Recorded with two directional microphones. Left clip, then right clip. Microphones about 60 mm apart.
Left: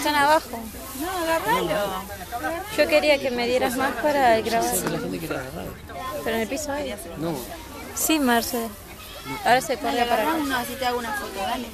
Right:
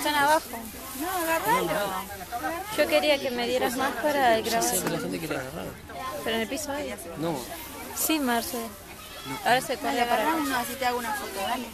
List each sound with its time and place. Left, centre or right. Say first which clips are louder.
0.0 s a woman's voice: left 4 dB; left
4.8 s speech: left 2 dB; right
6.2 s a woman's voice: left 3 dB; centre
8.1 s speech: left 5 dB; left
9.4 s a woman's voice: left 4 dB; centre